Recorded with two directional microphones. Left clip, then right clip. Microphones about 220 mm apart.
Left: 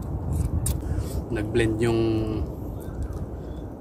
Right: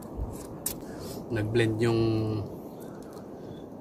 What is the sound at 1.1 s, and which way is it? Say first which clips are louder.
Speech: left 2 dB; 5° left (ahead or behind).